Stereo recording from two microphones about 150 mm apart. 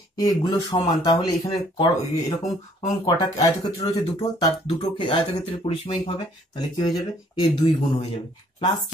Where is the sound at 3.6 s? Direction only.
25° left (ahead or behind).